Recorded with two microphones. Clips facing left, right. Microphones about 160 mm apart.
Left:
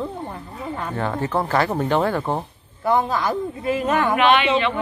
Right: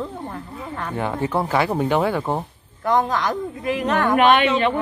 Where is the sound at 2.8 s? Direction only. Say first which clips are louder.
Even; 5° left (ahead or behind).